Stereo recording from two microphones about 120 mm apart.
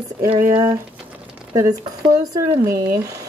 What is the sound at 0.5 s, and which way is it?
Speech, 30° right (ahead or behind).